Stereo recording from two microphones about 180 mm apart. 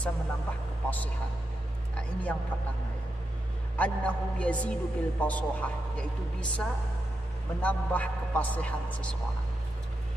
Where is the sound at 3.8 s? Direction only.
5° left (ahead or behind).